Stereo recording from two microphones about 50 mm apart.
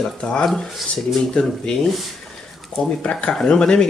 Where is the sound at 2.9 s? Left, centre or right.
Centre.